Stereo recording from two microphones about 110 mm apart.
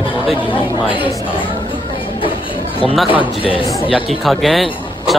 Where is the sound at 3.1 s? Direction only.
55° left (ahead or behind).